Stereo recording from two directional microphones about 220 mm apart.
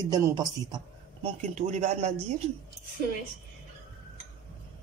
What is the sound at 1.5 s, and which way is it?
Speech, 30° right (ahead or behind).